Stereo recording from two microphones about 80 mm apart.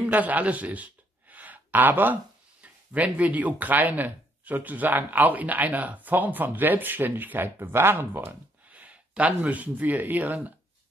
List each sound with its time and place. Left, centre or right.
0.0 s a sound: right
2.6 s speech: centre
8.6 s speech: centre